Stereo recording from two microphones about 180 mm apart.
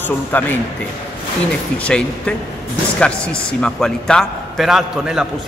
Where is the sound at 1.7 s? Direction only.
5° left (ahead or behind).